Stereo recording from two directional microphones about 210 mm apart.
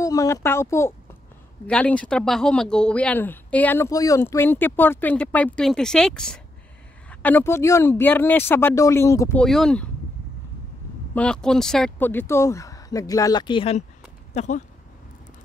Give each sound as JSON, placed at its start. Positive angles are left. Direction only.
{"t": 0.0, "sound": "speech", "side_deg": 15}
{"t": 9.4, "sound": "speech", "side_deg": 0}
{"t": 11.1, "sound": "speech", "side_deg": 5}